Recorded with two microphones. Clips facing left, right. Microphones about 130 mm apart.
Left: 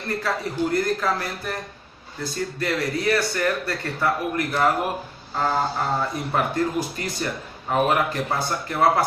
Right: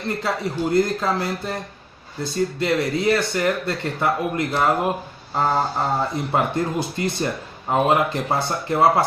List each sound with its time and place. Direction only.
0.2 s speech: 20° right (ahead or behind)